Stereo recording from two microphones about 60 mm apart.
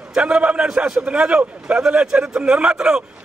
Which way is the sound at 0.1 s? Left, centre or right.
Centre.